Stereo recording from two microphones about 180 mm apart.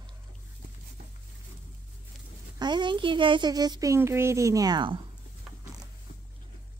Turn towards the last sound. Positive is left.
turn(degrees=-25)  # may be behind; listen again after turning